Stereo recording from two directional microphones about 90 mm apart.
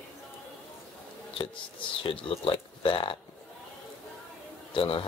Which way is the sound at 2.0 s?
75° left (ahead or behind).